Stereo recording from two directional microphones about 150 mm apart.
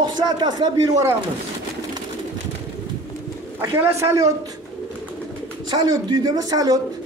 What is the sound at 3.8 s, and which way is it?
Speech, 20° right (ahead or behind).